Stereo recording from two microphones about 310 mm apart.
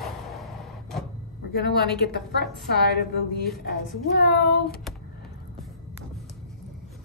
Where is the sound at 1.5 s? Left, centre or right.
Left.